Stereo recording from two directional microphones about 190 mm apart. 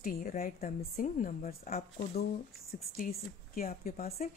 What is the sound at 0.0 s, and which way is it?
A woman's voice, 50° left (ahead or behind).